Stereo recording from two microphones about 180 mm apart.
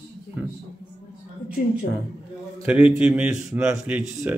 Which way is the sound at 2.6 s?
5° right (ahead or behind).